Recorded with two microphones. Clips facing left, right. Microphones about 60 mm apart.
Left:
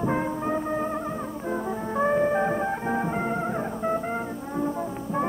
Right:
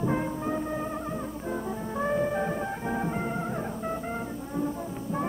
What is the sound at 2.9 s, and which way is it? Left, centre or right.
Music, centre.